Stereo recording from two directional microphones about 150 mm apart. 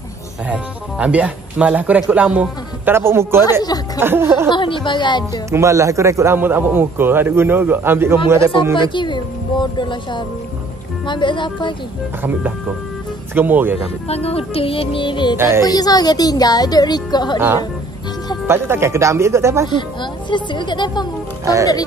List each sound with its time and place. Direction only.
0.5 s speech: 10° right (ahead or behind)
3.6 s speech: 25° left (ahead or behind)
4.0 s speech: 15° right (ahead or behind)
4.5 s speech: 35° left (ahead or behind)
5.5 s speech: 20° right (ahead or behind)
8.7 s speech: 30° left (ahead or behind)
12.2 s speech: 10° right (ahead or behind)
14.0 s speech: 40° left (ahead or behind)
15.3 s speech: 15° right (ahead or behind)
15.6 s speech: 25° left (ahead or behind)
18.5 s speech: 15° right (ahead or behind)
19.7 s speech: 30° left (ahead or behind)